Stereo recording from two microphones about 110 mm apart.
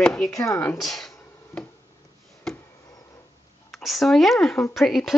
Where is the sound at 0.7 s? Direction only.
Centre (ahead or behind).